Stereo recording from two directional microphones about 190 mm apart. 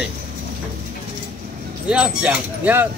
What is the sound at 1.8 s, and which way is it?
Speech, 5° right (ahead or behind).